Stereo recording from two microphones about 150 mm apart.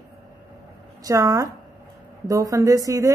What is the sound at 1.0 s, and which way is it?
A man's voice, 25° right (ahead or behind).